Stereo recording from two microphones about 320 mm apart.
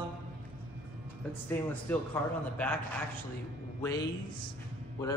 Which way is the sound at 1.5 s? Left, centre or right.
Centre.